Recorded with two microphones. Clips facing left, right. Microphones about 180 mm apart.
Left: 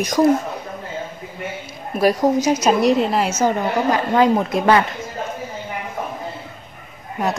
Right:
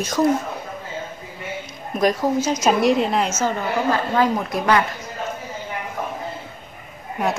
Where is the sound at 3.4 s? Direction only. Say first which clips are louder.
Left 3 dB; 15° left (ahead or behind).